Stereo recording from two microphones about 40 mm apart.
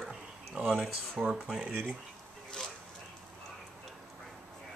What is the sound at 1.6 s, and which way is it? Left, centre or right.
Speech, right.